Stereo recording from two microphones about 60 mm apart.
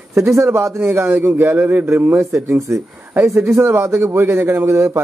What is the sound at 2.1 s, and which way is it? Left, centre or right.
A man's voice, right.